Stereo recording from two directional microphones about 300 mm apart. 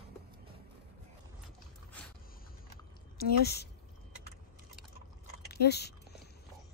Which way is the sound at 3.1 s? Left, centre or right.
Left.